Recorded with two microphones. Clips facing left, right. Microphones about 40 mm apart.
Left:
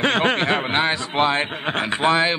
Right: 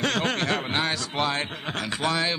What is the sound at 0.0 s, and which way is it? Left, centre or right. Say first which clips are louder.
A man's voice: left 6 dB; left.